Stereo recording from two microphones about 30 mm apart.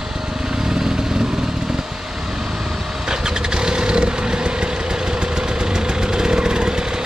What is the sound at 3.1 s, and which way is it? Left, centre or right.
Vehicle, right.